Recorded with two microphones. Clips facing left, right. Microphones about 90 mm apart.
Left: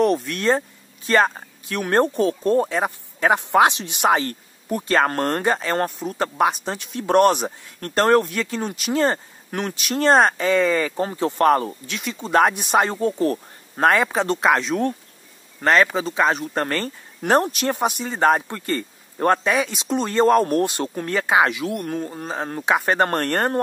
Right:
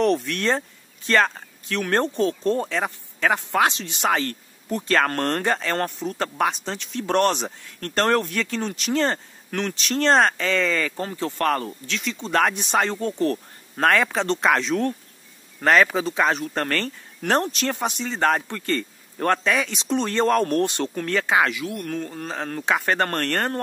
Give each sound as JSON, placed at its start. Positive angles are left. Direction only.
{"t": 0.0, "sound": "speech", "side_deg": 5}